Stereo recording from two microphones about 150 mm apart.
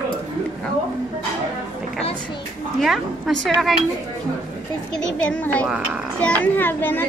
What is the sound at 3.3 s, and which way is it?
Speech, centre (ahead or behind).